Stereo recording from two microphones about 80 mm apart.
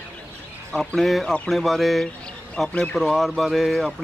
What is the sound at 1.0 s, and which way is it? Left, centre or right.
Speech, centre.